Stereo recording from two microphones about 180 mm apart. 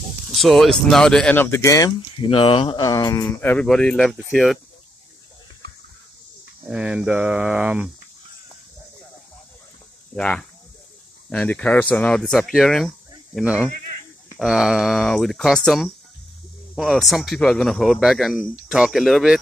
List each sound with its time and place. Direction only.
0.3 s speech: centre (ahead or behind); by 3.3 s 20° left (ahead or behind)
3.3 s speech: 5° left (ahead or behind)
6.6 s speech: 5° right (ahead or behind)
10.1 s speech: 5° left (ahead or behind)